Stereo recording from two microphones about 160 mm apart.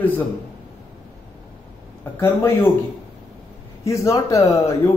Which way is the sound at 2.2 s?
15° left (ahead or behind).